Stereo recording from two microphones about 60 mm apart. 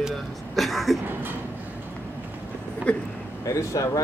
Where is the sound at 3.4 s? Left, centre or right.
Left.